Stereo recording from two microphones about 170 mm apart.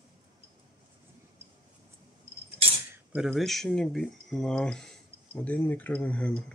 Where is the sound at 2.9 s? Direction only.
10° right (ahead or behind).